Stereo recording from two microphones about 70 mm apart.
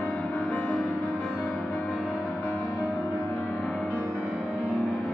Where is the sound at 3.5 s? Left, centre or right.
Centre.